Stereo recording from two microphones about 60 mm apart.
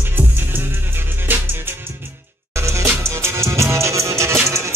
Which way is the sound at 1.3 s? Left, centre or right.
Right.